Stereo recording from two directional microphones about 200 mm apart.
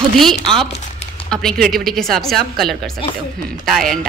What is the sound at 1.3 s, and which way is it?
A woman's voice, 5° left (ahead or behind).